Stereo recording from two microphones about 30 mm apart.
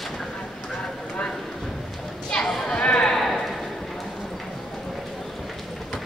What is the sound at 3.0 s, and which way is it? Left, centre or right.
Clip-clop, centre.